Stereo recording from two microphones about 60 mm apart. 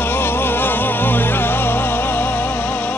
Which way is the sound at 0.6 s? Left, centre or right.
Left.